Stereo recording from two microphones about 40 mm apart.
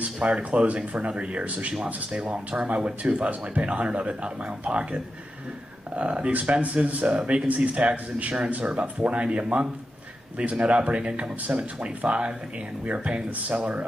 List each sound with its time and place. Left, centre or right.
0.2 s speech: right